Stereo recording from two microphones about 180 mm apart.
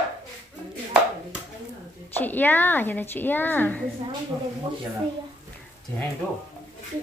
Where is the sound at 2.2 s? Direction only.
10° left (ahead or behind).